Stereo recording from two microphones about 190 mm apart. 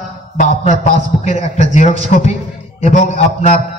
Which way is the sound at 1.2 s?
35° left (ahead or behind).